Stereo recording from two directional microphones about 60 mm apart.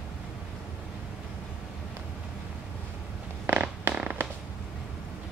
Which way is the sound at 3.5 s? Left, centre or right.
Right.